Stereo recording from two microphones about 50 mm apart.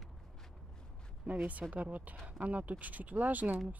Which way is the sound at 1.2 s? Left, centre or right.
Right.